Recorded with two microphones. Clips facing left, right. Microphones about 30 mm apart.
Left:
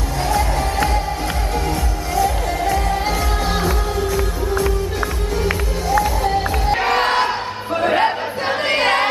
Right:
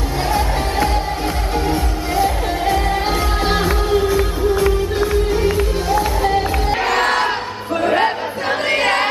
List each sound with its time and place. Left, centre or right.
0.3 s music: centre
1.7 s music: right
6.7 s crowd: centre